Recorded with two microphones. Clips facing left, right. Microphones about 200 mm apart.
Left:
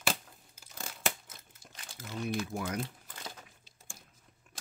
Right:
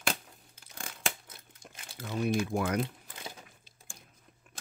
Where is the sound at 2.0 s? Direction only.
65° right (ahead or behind).